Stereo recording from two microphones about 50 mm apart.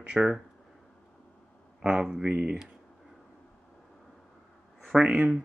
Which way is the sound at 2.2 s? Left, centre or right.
Right.